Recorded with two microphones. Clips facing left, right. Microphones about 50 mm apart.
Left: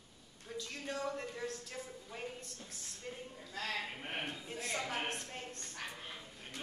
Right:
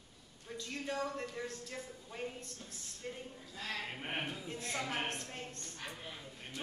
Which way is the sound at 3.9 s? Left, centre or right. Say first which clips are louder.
Right 2 dB; centre.